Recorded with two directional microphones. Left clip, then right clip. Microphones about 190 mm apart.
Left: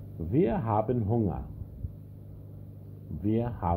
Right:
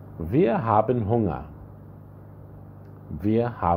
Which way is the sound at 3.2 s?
30° right (ahead or behind).